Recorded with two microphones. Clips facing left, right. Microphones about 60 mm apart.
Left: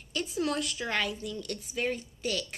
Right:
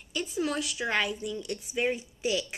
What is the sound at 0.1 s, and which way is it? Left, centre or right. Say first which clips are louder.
A woman's voice: even; centre.